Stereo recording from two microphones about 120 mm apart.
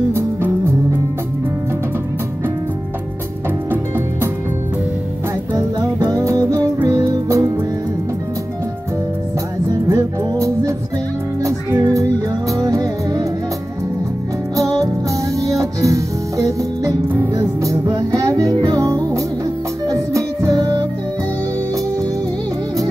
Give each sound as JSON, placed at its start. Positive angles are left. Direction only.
{"t": 0.1, "sound": "music", "side_deg": -20}
{"t": 5.5, "sound": "music", "side_deg": -25}
{"t": 9.8, "sound": "music", "side_deg": -25}
{"t": 14.6, "sound": "music", "side_deg": -30}